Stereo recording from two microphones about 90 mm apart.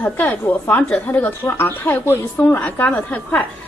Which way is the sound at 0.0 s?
20° left (ahead or behind).